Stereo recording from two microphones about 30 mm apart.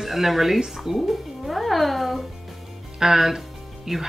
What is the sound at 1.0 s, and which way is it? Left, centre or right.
Music, centre.